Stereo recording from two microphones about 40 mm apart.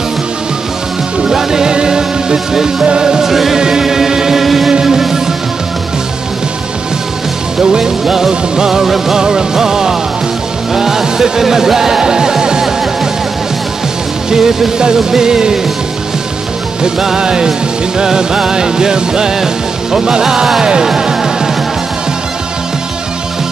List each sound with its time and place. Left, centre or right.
1.3 s music: centre
3.5 s music: centre
7.7 s music: centre
14.3 s music: centre
16.8 s music: centre